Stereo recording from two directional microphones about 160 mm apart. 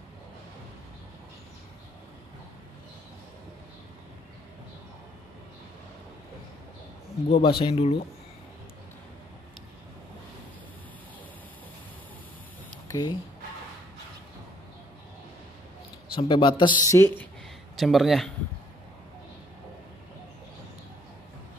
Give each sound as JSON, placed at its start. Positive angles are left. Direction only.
{"t": 7.2, "sound": "speech", "side_deg": 35}
{"t": 12.8, "sound": "speech", "side_deg": 25}
{"t": 16.2, "sound": "speech", "side_deg": 30}
{"t": 16.8, "sound": "speech", "side_deg": 20}
{"t": 17.7, "sound": "speech", "side_deg": 0}